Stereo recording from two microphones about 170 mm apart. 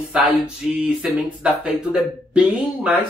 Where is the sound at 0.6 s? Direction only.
5° right (ahead or behind).